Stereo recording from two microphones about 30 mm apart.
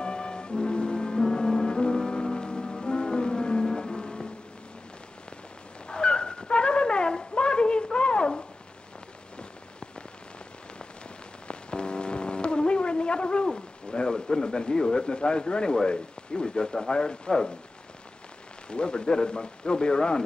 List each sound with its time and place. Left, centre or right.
0.0 s vehicle: left
2.3 s music: left
3.2 s vehicle: left
3.6 s vehicle: centre
3.9 s music: left
5.9 s a sound: left
9.4 s rain on surface: left
11.4 s a sound: left
13.8 s a man's voice: left
18.7 s a man's voice: left